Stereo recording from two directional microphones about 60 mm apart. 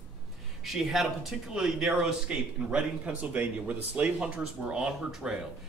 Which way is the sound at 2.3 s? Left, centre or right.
Centre.